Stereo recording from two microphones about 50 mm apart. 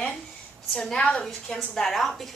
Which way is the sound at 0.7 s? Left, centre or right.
Centre.